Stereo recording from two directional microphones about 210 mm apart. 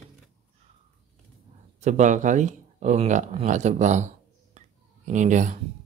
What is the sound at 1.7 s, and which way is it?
Speech, 35° right (ahead or behind).